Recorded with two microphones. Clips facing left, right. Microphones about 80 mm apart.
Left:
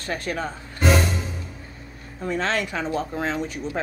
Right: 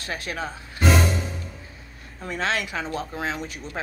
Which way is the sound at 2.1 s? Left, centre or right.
Centre.